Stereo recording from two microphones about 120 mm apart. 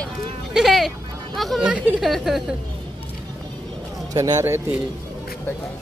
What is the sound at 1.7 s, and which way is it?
Speech, centre (ahead or behind).